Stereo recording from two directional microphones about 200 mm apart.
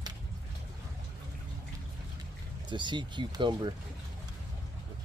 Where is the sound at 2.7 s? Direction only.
25° right (ahead or behind).